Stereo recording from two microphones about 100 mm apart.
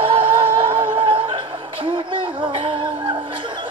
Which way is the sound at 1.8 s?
55° right (ahead or behind).